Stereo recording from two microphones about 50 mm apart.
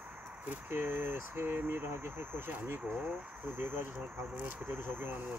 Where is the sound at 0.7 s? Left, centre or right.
Right.